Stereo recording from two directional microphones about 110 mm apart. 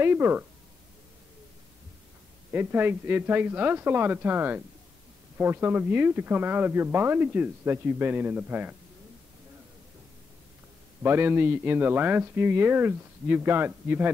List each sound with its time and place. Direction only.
0.0 s speech: 20° right (ahead or behind)
2.5 s speech: 20° right (ahead or behind)
11.0 s speech: 20° right (ahead or behind)